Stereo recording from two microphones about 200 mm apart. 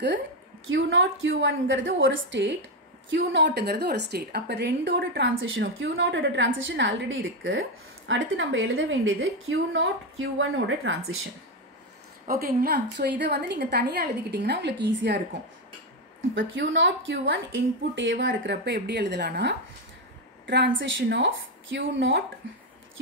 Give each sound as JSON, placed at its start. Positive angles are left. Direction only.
{"t": 0.7, "sound": "a woman's voice", "side_deg": -75}
{"t": 10.9, "sound": "a woman's voice", "side_deg": -70}
{"t": 12.3, "sound": "a woman's voice", "side_deg": -45}
{"t": 16.3, "sound": "a woman's voice", "side_deg": -70}